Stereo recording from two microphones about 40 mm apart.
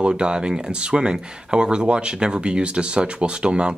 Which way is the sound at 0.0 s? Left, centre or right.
Right.